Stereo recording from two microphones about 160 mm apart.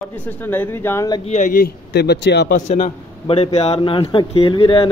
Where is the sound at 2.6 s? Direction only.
55° left (ahead or behind).